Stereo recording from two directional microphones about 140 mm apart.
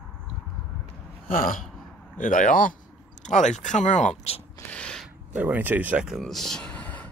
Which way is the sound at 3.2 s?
60° left (ahead or behind).